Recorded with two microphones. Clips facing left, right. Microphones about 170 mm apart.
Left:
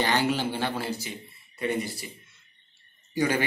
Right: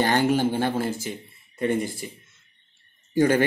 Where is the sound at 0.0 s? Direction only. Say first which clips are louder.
Right 5 dB; 50° right (ahead or behind).